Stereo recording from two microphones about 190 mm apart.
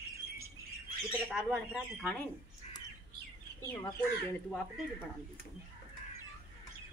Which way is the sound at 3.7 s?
20° left (ahead or behind).